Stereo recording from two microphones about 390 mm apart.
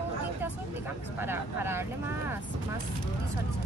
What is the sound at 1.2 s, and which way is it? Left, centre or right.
Speech, centre.